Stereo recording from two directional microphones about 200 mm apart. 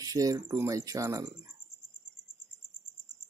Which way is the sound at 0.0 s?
15° right (ahead or behind).